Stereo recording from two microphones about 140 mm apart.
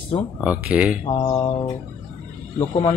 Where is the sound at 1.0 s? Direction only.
40° left (ahead or behind).